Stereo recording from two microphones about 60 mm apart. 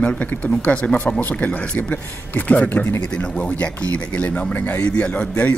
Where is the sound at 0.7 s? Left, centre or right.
Centre.